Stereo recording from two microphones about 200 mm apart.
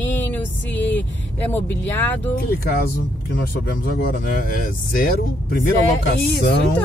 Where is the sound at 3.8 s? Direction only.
45° left (ahead or behind).